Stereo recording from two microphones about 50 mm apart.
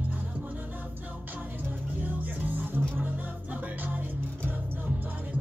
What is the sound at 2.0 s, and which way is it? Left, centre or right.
Music, right.